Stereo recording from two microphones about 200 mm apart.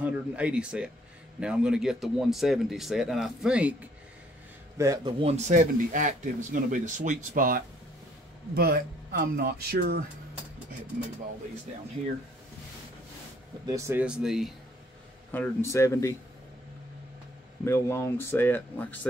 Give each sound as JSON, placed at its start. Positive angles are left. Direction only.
{"t": 0.0, "sound": "speech", "side_deg": -5}
{"t": 4.7, "sound": "a man's voice", "side_deg": -15}
{"t": 5.2, "sound": "speech", "side_deg": -35}
{"t": 13.7, "sound": "speech", "side_deg": -15}
{"t": 15.3, "sound": "speech", "side_deg": 10}
{"t": 17.6, "sound": "speech", "side_deg": 15}